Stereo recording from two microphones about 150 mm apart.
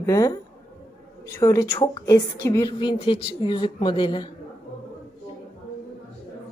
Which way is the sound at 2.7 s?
30° left (ahead or behind).